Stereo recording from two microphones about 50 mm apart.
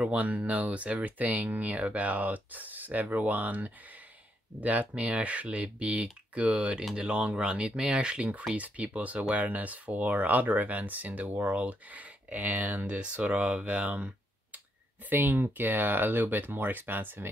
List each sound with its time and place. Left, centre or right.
0.0 s speech: right
12.8 s speech: right
15.0 s speech: right